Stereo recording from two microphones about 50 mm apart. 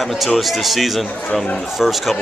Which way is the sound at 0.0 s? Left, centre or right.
Centre.